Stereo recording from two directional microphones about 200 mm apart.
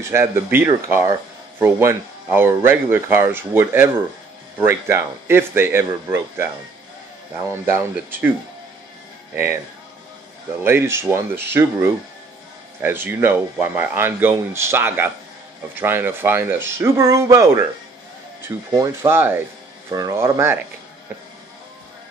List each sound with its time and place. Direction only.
0.0 s speech: 15° right (ahead or behind)
7.7 s speech: 10° right (ahead or behind)
9.3 s speech: 10° right (ahead or behind)
10.6 s speech: 10° right (ahead or behind)
18.7 s speech: 15° right (ahead or behind)